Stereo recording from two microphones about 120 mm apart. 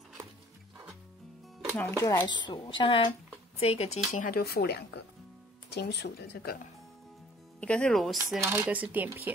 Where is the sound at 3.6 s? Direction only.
60° left (ahead or behind).